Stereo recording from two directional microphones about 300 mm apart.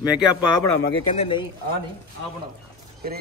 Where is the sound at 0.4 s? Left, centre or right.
Centre.